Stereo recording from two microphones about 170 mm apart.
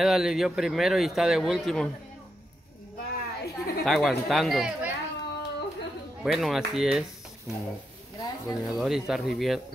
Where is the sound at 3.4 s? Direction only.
70° left (ahead or behind).